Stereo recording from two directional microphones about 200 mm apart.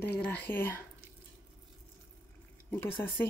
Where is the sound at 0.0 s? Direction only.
10° left (ahead or behind).